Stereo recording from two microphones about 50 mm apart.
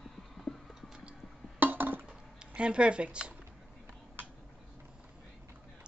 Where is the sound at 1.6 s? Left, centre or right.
Right.